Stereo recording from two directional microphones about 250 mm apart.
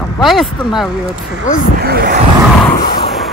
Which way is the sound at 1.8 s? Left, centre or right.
Right.